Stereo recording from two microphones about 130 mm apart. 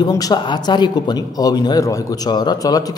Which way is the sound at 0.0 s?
35° left (ahead or behind).